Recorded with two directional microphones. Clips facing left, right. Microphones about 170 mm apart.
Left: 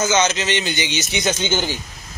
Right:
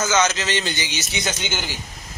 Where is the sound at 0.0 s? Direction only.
20° left (ahead or behind).